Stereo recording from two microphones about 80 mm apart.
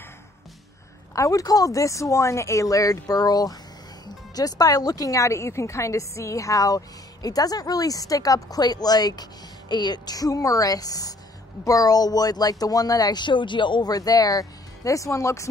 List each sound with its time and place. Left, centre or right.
1.1 s a woman's voice: left
13.8 s speech: left